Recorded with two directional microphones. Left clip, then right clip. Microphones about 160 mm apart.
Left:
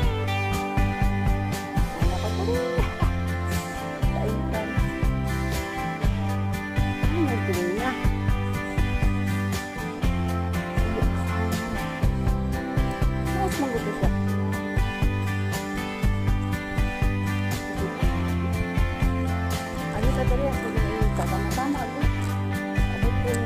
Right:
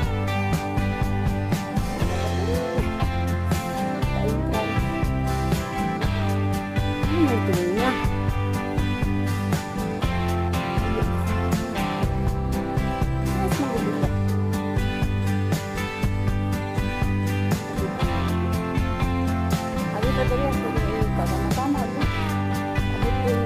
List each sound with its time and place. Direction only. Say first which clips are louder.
7.2 s music: right 4 dB; 45° right (ahead or behind)